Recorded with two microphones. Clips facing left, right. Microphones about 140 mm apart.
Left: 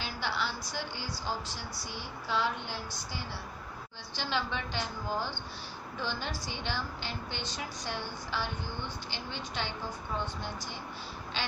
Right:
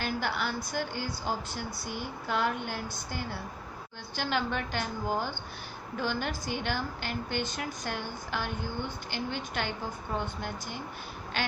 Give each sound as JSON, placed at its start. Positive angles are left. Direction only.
{"t": 0.0, "sound": "a woman's voice", "side_deg": -50}